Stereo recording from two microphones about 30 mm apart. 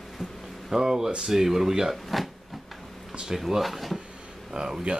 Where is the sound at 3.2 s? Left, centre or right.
Centre.